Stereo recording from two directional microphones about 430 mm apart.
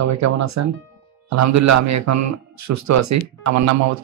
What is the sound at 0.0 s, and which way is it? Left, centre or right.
A man's voice, right.